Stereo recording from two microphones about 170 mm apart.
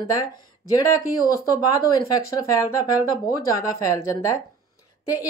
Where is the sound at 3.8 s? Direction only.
20° left (ahead or behind).